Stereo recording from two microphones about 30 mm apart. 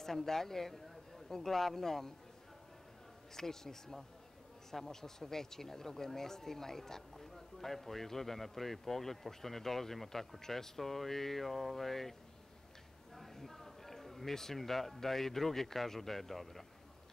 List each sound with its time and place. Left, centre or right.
0.0 s speech: centre
3.3 s speech: centre